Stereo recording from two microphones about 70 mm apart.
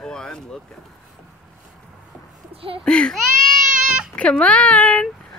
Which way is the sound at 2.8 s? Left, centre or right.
Centre.